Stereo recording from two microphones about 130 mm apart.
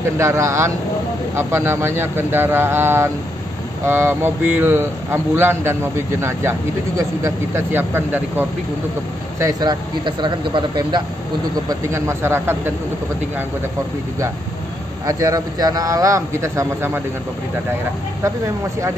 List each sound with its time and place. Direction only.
0.2 s a man's voice: 20° right (ahead or behind)
7.2 s speech: 20° right (ahead or behind)
9.4 s speech: 30° right (ahead or behind)
11.9 s a man's voice: 20° right (ahead or behind)
15.0 s a man's voice: 25° right (ahead or behind)